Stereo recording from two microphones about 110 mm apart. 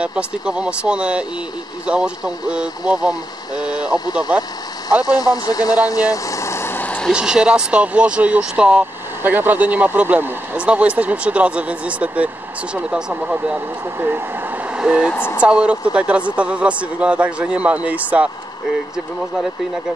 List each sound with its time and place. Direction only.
0.0 s speech: 10° right (ahead or behind)
4.0 s speech: 40° left (ahead or behind)
6.1 s vehicle: 30° left (ahead or behind); by 7.1 s 15° left (ahead or behind)
7.1 s speech: 10° right (ahead or behind)
14.8 s speech: 5° right (ahead or behind)
15.1 s speech: 20° left (ahead or behind)
15.4 s speech: 10° right (ahead or behind)